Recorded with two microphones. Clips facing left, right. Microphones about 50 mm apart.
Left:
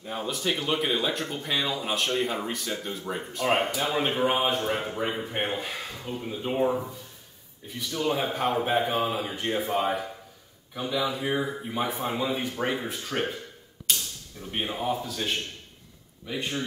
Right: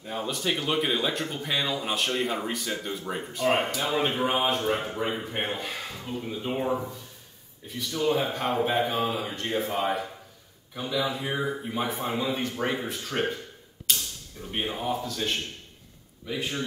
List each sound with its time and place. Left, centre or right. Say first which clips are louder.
0.0 s speech: even; centre
8.2 s speech: left 1 dB; centre
8.5 s speech: right 1 dB; centre
13.9 s a sound: even; centre
14.5 s speech: left 1 dB; centre